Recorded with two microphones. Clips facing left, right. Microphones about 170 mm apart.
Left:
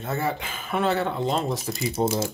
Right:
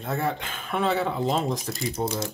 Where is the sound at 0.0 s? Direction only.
Centre (ahead or behind).